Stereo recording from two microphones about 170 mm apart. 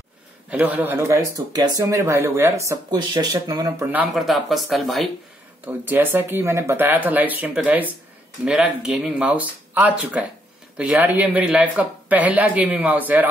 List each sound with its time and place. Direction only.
0.5 s speech: 10° right (ahead or behind)
3.8 s speech: 10° right (ahead or behind)
5.7 s speech: 10° right (ahead or behind)